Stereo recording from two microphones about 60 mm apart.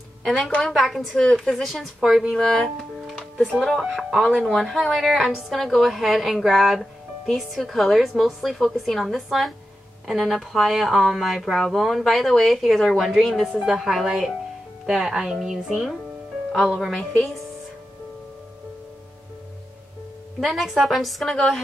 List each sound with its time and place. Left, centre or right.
0.4 s a woman's voice: centre
0.7 s a woman's voice: centre
1.1 s a woman's voice: centre
20.3 s a woman's voice: centre